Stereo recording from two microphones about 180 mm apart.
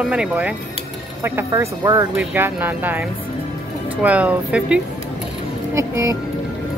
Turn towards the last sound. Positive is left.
turn(degrees=-15)  # may be behind; listen again after turning